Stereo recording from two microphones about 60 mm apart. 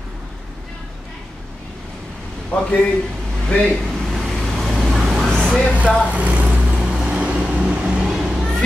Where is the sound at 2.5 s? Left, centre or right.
Centre.